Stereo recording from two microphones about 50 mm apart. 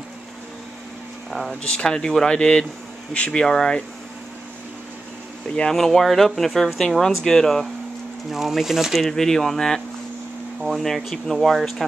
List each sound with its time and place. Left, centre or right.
1.5 s speech: left
5.7 s speech: centre
8.3 s speech: centre
9.0 s speech: centre